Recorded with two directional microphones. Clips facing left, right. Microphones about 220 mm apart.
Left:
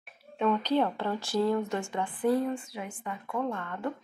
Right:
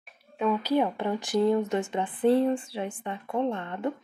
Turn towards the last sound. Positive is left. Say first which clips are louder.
# right 4 dB
turn(degrees=-20)  # may be behind; listen again after turning